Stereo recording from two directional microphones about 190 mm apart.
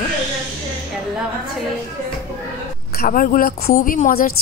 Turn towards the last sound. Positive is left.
turn(degrees=50)  # may be behind; listen again after turning